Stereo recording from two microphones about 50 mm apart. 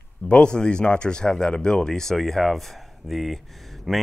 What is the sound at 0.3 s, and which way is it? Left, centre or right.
Speech, centre.